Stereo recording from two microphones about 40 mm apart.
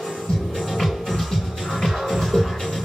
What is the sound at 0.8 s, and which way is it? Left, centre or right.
Music, centre.